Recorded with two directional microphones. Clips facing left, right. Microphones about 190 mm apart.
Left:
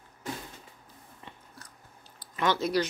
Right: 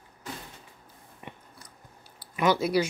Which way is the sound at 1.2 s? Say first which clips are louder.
Right 5 dB; 15° right (ahead or behind).